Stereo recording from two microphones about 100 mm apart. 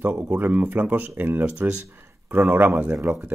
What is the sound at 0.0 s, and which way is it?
Speech, 20° right (ahead or behind).